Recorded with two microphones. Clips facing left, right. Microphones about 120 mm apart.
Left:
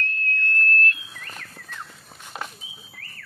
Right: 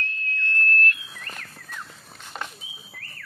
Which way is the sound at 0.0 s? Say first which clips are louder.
Left 3 dB; 55° left (ahead or behind).